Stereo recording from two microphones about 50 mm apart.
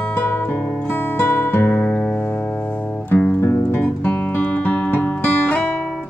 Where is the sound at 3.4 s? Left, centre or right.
Left.